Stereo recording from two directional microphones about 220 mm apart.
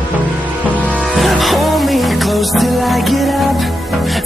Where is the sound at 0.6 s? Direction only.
5° left (ahead or behind).